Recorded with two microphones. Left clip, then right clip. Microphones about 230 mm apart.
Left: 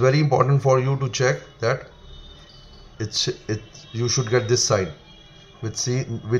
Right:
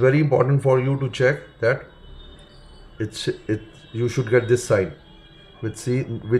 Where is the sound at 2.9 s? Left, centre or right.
Centre.